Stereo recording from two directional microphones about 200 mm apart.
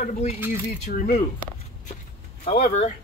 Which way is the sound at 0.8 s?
45° left (ahead or behind).